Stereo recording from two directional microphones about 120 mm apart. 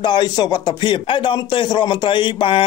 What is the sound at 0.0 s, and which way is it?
Speech, 35° left (ahead or behind).